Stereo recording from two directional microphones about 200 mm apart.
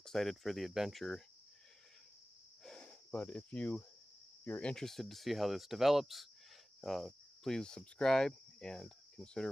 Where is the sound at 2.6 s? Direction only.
5° left (ahead or behind).